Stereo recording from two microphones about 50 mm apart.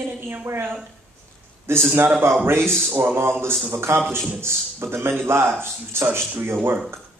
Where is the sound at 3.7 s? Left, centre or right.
Right.